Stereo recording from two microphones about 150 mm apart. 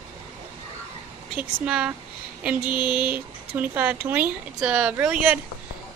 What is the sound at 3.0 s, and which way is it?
Speech, 10° right (ahead or behind).